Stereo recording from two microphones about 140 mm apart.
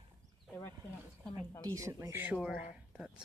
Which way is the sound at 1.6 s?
25° right (ahead or behind).